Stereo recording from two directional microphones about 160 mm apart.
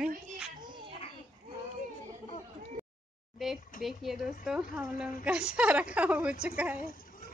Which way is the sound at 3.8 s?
Centre (ahead or behind).